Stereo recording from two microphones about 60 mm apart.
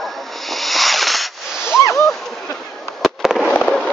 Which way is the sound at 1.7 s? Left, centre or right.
Left.